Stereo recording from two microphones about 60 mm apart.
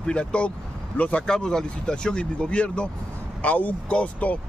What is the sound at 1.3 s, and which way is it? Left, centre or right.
Speech, centre.